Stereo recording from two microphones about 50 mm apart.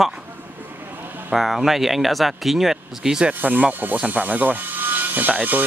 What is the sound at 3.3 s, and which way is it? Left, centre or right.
Speech, right.